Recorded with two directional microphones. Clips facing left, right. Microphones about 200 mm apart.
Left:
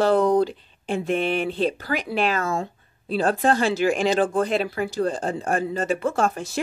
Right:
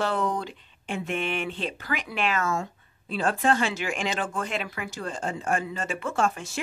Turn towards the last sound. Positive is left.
turn(degrees=35)  # may be behind; listen again after turning